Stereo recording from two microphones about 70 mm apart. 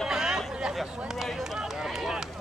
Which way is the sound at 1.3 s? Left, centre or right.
Centre.